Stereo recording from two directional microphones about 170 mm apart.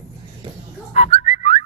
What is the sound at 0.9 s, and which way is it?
Whistling, 35° left (ahead or behind).